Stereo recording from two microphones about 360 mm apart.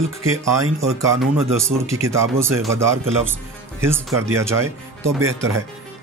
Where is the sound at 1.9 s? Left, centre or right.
Centre.